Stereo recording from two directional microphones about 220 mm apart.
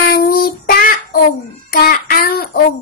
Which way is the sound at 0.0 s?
45° left (ahead or behind).